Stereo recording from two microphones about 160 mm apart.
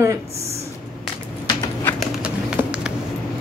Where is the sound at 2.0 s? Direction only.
5° right (ahead or behind).